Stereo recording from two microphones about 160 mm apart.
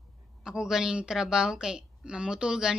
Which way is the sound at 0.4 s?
5° right (ahead or behind).